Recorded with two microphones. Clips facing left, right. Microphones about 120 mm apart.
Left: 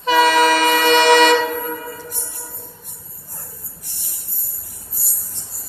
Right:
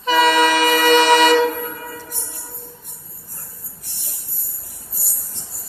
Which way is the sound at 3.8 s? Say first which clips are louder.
Right 1 dB; 70° right (ahead or behind).